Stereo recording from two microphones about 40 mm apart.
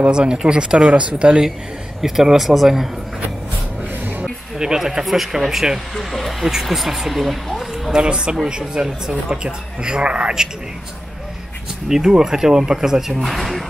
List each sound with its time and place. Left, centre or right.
0.1 s speech: right
2.0 s speech: centre
4.6 s speech: centre
5.9 s speech: centre
6.4 s speech: centre
7.9 s speech: centre
12.1 s speech: centre
13.2 s speech: centre